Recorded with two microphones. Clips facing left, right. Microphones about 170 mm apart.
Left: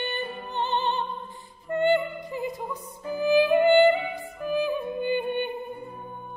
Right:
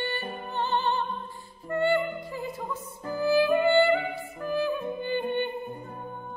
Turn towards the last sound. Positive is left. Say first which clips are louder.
# left 2 dB
turn(degrees=15)  # may be behind; listen again after turning